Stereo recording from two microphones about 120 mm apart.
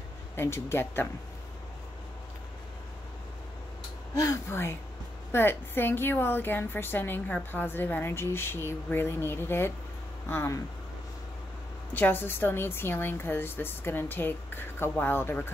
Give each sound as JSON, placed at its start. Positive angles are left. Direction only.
{"t": 0.4, "sound": "speech", "side_deg": 20}
{"t": 4.1, "sound": "a woman's voice", "side_deg": 25}
{"t": 11.9, "sound": "a woman's voice", "side_deg": 15}